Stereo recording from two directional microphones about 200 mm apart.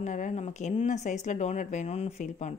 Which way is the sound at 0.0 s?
35° left (ahead or behind).